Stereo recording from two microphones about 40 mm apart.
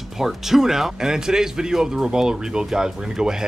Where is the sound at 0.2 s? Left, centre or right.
Centre.